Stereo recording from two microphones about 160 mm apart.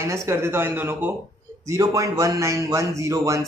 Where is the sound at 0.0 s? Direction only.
15° right (ahead or behind).